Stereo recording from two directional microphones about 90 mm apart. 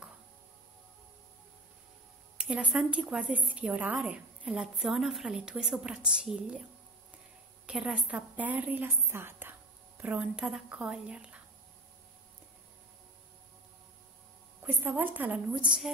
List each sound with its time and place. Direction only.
2.3 s a woman's voice: 15° right (ahead or behind)
4.5 s a woman's voice: centre (ahead or behind)
7.6 s a woman's voice: 10° right (ahead or behind); by 9.6 s 25° right (ahead or behind)
10.0 s a woman's voice: 10° right (ahead or behind)
14.6 s a woman's voice: 20° right (ahead or behind)
15.5 s a woman's voice: 5° right (ahead or behind)